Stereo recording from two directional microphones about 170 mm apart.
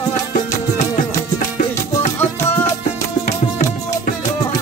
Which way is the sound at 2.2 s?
15° left (ahead or behind).